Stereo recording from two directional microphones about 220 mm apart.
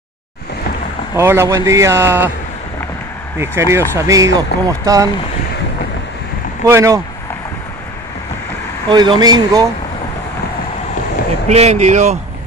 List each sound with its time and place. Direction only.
1.1 s a man's voice: 10° right (ahead or behind)
3.3 s a man's voice: 10° right (ahead or behind)
6.6 s a man's voice: 15° right (ahead or behind)
8.8 s speech: 20° right (ahead or behind)
11.4 s speech: 30° right (ahead or behind)